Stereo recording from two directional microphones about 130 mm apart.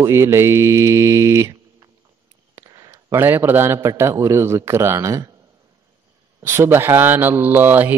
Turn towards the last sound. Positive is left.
turn(degrees=-15)  # may be behind; listen again after turning